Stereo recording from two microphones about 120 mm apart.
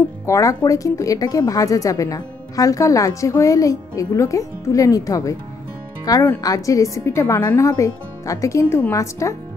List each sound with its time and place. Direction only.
0.3 s a woman's voice: 25° left (ahead or behind)